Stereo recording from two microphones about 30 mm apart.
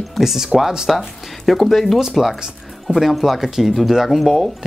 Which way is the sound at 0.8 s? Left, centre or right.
Centre.